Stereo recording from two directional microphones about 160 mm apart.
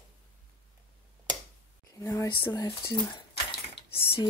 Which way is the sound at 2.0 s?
20° left (ahead or behind).